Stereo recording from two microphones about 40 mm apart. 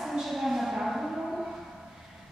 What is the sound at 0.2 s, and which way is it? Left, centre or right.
Cattle, centre.